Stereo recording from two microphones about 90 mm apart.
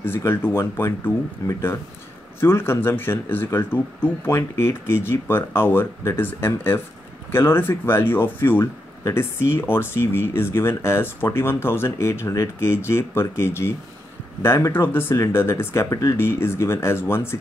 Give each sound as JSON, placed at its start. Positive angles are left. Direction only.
{"t": 0.2, "sound": "speech", "side_deg": 25}